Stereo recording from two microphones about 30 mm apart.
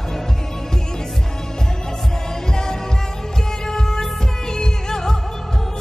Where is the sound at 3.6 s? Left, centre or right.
Centre.